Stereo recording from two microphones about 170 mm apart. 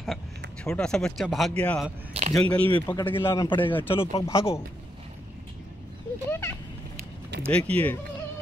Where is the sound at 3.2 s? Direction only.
25° left (ahead or behind).